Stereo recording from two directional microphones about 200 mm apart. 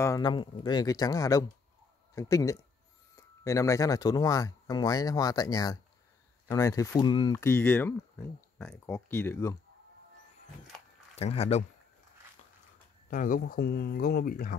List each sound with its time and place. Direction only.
0.0 s speech: 20° left (ahead or behind)
11.1 s speech: 30° left (ahead or behind)
13.1 s speech: 45° left (ahead or behind)